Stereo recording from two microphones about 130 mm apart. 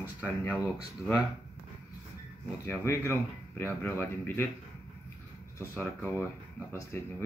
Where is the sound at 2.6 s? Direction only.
20° left (ahead or behind).